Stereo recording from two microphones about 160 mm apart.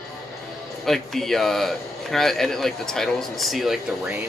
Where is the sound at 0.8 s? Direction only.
Centre (ahead or behind).